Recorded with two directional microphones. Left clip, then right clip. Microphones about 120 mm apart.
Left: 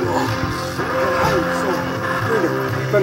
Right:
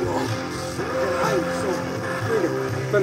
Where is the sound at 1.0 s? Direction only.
20° left (ahead or behind).